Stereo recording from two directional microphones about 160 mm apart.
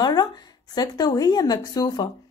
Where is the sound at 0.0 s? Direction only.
25° left (ahead or behind).